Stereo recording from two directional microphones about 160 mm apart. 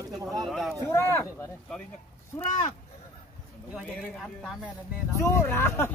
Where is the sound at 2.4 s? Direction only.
50° left (ahead or behind).